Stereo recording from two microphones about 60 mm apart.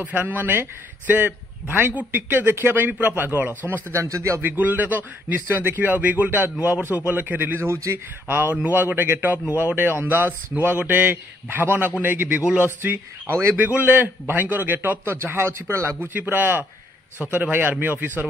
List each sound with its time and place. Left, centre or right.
0.0 s a man's voice: right
3.9 s a man's voice: right
4.4 s a man's voice: right
16.0 s a man's voice: right